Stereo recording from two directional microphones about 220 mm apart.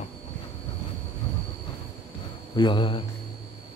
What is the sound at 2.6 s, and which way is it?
Speech, 20° left (ahead or behind).